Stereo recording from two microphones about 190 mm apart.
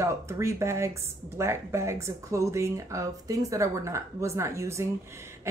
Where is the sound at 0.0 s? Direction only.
15° right (ahead or behind).